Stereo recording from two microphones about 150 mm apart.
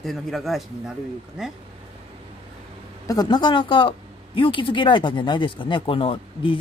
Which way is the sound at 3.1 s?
25° left (ahead or behind).